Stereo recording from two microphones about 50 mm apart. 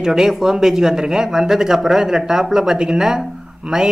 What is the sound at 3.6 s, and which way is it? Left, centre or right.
Speech, right.